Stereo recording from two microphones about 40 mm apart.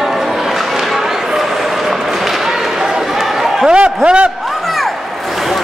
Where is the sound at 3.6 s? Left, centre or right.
Right.